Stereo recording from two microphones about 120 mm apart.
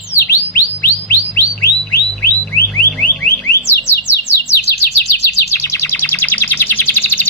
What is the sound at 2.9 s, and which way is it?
Car alarm, 10° left (ahead or behind).